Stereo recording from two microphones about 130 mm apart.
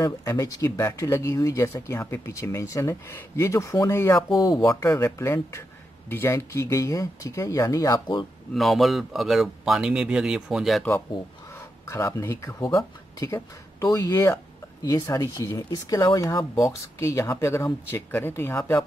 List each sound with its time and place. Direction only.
0.0 s speech: 25° left (ahead or behind)
8.5 s a man's voice: centre (ahead or behind)
11.8 s speech: 20° left (ahead or behind)